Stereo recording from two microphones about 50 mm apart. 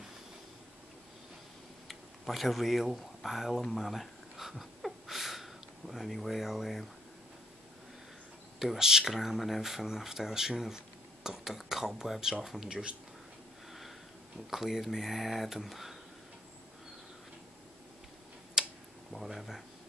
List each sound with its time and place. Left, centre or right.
1.9 s speech: centre
3.7 s a sound: centre
8.5 s speech: centre
12.6 s speech: centre
14.5 s speech: centre
18.6 s tick: centre
19.1 s speech: centre